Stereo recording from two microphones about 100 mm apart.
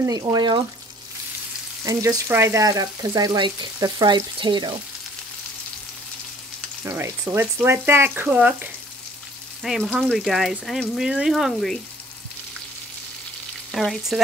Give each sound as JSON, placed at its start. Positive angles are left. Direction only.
{"t": 0.0, "sound": "frying", "side_deg": -35}
{"t": 1.9, "sound": "frying", "side_deg": -35}
{"t": 6.8, "sound": "frying", "side_deg": -25}
{"t": 9.6, "sound": "speech", "side_deg": 0}
{"t": 13.7, "sound": "frying", "side_deg": 0}